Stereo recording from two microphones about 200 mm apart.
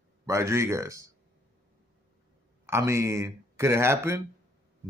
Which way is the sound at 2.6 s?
15° right (ahead or behind).